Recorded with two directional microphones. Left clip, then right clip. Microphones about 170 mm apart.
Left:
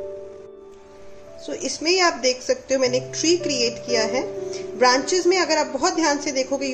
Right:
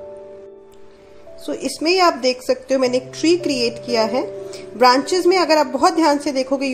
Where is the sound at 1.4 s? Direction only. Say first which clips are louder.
Right 4 dB; 40° right (ahead or behind).